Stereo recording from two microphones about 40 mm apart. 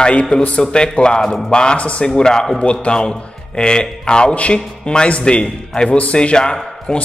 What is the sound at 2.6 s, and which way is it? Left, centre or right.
Speech, left.